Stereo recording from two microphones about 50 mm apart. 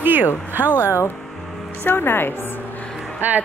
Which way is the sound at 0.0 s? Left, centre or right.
Right.